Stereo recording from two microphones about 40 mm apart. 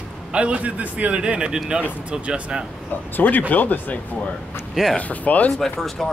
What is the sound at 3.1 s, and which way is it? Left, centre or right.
Speech, left.